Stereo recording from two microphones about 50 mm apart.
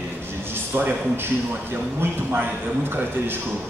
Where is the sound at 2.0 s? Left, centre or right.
Right.